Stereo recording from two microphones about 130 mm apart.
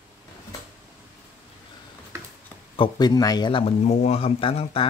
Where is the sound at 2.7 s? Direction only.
35° left (ahead or behind).